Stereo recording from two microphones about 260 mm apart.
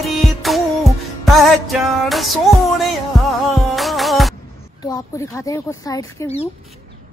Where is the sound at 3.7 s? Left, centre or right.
Centre.